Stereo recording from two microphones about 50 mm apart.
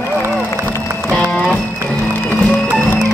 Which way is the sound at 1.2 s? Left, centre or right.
Left.